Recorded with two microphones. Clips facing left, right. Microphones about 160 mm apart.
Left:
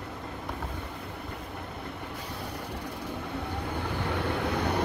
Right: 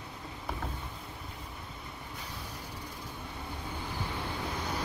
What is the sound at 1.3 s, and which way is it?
Train, 65° left (ahead or behind).